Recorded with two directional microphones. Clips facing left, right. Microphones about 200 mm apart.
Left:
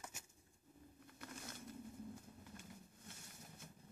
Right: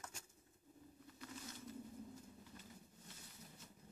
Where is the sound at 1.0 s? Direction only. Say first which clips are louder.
Even; 55° left (ahead or behind).